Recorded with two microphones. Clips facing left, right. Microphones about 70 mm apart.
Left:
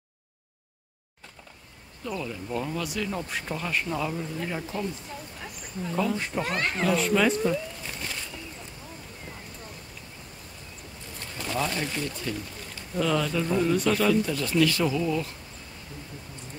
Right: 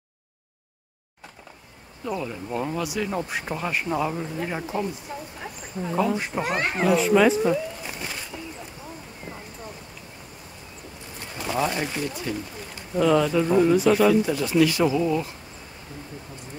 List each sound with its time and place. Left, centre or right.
2.0 s speech: right
7.0 s speech: centre
11.3 s speech: centre